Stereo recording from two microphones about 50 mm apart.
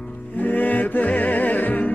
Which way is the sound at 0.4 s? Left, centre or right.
Left.